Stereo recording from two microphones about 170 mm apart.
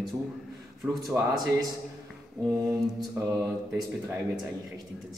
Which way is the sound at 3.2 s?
15° right (ahead or behind).